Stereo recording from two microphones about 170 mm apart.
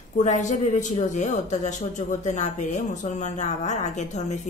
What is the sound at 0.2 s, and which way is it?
A woman's voice, 45° left (ahead or behind).